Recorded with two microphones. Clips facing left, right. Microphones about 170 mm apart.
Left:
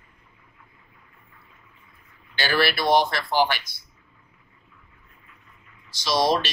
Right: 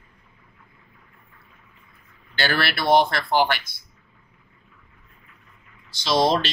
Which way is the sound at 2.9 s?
55° right (ahead or behind).